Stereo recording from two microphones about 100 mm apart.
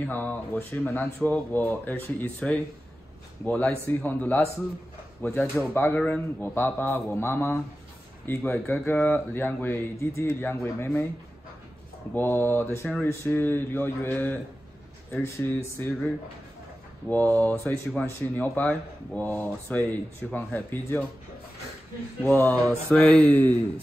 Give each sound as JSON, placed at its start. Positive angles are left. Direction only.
{"t": 0.0, "sound": "speech", "side_deg": 15}
{"t": 5.9, "sound": "speech", "side_deg": 10}
{"t": 6.4, "sound": "speech", "side_deg": 20}
{"t": 12.1, "sound": "speech", "side_deg": 20}
{"t": 17.1, "sound": "speech", "side_deg": 15}
{"t": 22.2, "sound": "speech", "side_deg": 20}
{"t": 22.9, "sound": "speech", "side_deg": 10}